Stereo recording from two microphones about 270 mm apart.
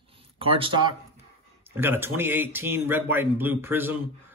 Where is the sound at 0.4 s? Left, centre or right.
Centre.